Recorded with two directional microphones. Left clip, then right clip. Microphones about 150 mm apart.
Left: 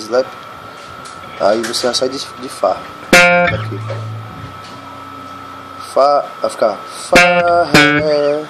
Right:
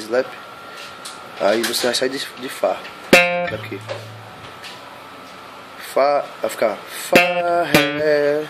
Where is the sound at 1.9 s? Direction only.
20° right (ahead or behind).